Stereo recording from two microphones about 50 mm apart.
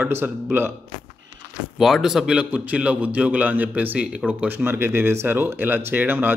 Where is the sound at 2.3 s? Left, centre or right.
Right.